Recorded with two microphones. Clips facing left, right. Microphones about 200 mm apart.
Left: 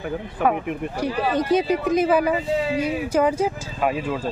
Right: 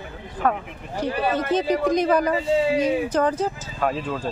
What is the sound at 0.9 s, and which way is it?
Speech, 15° left (ahead or behind).